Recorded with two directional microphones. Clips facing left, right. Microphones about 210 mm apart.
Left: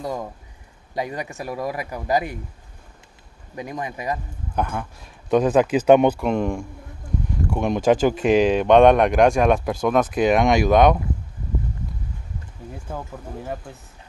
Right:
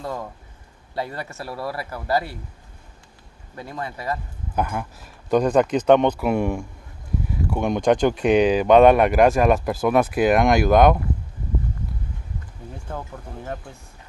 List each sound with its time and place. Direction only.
0.0 s speech: 15° left (ahead or behind)
3.5 s speech: 15° left (ahead or behind)
4.6 s speech: 5° right (ahead or behind)
6.1 s speech: 5° right (ahead or behind)
12.7 s speech: 5° left (ahead or behind)